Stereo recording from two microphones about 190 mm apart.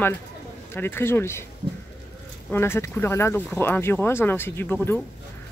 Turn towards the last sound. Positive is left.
turn(degrees=10)  # may be behind; listen again after turning